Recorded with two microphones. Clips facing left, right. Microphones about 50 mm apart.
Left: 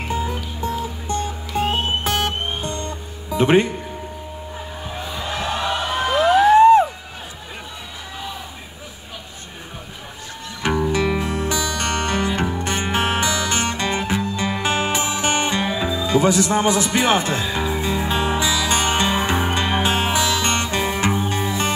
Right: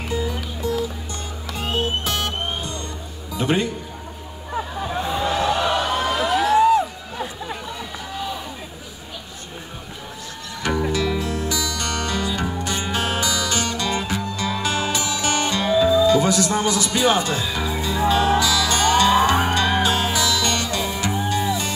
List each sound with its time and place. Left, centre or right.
0.1 s music: left
5.9 s a sound: left
10.9 s music: left